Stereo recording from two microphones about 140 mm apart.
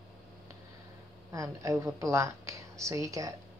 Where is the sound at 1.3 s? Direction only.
20° right (ahead or behind).